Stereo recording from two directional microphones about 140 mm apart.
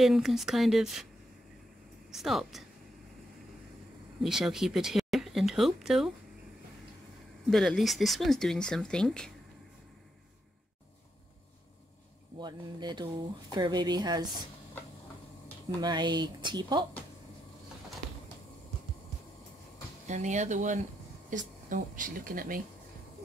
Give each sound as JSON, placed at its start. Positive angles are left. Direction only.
{"t": 0.0, "sound": "speech", "side_deg": -5}
{"t": 2.0, "sound": "speech", "side_deg": 0}
{"t": 4.2, "sound": "speech", "side_deg": -5}
{"t": 7.4, "sound": "speech", "side_deg": 5}
{"t": 12.4, "sound": "speech", "side_deg": -30}
{"t": 15.8, "sound": "speech", "side_deg": -30}
{"t": 20.1, "sound": "speech", "side_deg": -60}